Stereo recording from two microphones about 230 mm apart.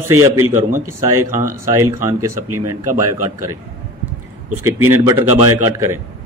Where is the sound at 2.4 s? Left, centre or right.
Right.